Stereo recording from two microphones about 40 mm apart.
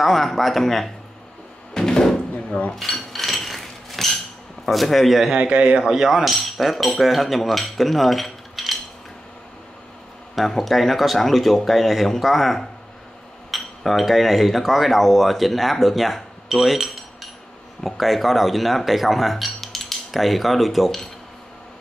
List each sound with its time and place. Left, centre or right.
0.0 s speech: centre
1.7 s door: centre
2.7 s a sound: centre
4.6 s speech: centre
5.3 s a man's voice: right
5.9 s speech: centre
7.0 s a sound: centre
10.6 s speech: centre
16.7 s cutlery: centre
17.8 s speech: centre